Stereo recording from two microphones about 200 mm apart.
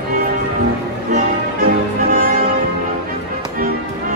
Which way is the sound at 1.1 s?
45° right (ahead or behind).